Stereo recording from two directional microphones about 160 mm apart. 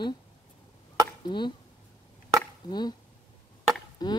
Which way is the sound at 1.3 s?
30° left (ahead or behind).